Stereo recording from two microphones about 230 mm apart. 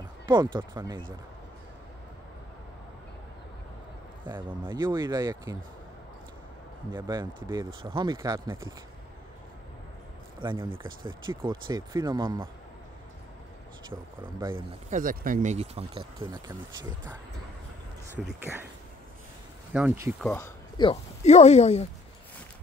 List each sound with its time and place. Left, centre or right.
0.3 s speech: centre
4.5 s speech: centre
7.0 s speech: centre
10.4 s speech: right
13.8 s speech: centre
14.9 s speech: right; by 18.7 s centre
19.7 s speech: centre
20.2 s speech: centre; by 21.8 s left